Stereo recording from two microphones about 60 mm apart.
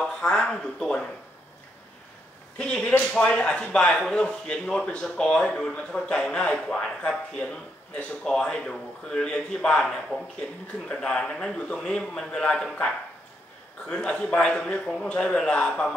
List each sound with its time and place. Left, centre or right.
0.0 s speech: centre
2.5 s speech: centre